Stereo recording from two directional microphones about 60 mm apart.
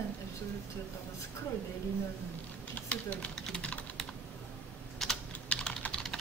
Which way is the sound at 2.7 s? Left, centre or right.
Left.